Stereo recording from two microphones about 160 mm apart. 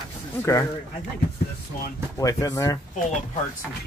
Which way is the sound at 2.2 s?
20° left (ahead or behind).